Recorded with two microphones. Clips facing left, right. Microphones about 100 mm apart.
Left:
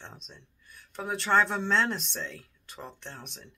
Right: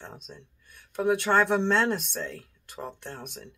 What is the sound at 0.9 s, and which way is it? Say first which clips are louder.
Speech: right 3 dB; 10° right (ahead or behind).